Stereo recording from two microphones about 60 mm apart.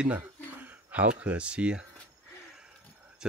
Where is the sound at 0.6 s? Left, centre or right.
Right.